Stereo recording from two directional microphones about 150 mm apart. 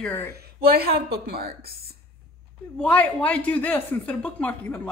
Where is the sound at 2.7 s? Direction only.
10° left (ahead or behind).